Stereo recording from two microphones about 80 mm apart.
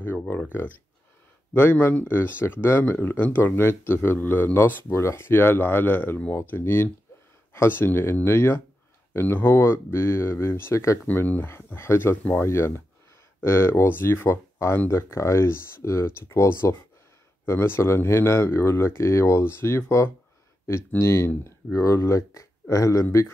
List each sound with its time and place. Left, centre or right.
0.0 s speech: left
1.5 s speech: left
11.1 s speech: left